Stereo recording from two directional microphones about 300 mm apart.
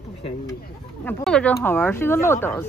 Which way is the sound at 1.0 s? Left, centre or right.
Centre.